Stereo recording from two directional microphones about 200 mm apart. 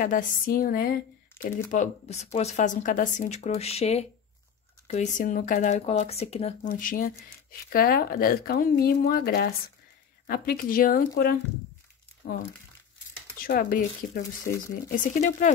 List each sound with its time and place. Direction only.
0.0 s speech: 40° left (ahead or behind)
6.7 s speech: 45° left (ahead or behind)
13.4 s speech: 45° left (ahead or behind)